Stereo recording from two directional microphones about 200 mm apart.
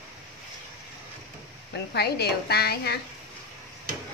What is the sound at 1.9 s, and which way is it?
A woman's voice, 55° left (ahead or behind).